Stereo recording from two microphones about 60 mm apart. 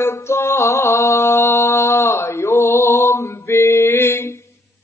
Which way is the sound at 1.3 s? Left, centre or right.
Left.